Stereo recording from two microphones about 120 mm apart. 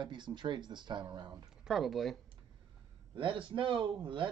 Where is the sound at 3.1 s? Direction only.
45° right (ahead or behind).